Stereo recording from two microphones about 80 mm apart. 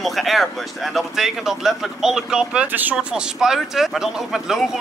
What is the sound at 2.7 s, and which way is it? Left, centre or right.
Speech, right.